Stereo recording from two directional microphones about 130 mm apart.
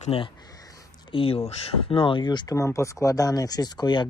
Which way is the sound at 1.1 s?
45° left (ahead or behind).